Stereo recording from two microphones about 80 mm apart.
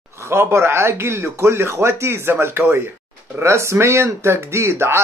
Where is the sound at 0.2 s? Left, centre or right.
Right.